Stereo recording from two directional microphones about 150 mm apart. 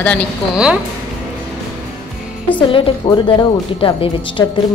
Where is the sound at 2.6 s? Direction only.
35° left (ahead or behind).